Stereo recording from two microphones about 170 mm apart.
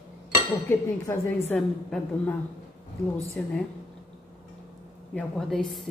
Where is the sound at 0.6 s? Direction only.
15° left (ahead or behind).